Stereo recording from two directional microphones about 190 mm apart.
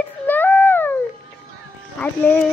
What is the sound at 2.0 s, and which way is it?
Music, 5° left (ahead or behind).